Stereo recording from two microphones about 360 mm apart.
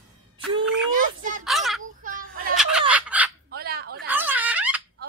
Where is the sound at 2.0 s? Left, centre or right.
Right.